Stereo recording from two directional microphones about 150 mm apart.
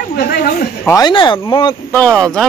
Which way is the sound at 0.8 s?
25° left (ahead or behind).